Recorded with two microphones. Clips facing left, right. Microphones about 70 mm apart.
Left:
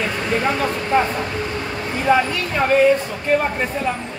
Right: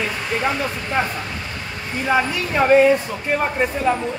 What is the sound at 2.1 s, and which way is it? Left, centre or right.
Speech, centre.